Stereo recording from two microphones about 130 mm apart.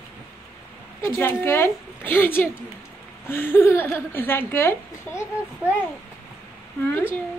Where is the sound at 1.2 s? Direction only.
20° left (ahead or behind).